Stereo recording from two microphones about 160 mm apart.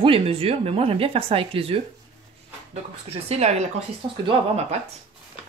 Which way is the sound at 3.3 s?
45° right (ahead or behind).